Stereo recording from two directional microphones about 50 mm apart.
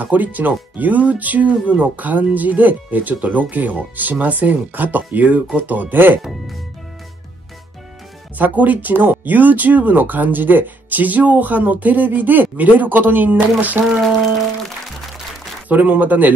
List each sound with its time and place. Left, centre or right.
0.0 s speech: right
8.4 s speech: right
15.7 s speech: right